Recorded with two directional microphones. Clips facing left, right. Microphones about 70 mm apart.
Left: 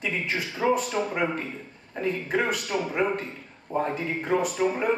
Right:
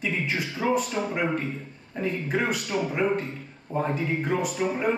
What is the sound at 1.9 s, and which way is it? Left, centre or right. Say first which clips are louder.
Speech: left 1 dB; centre.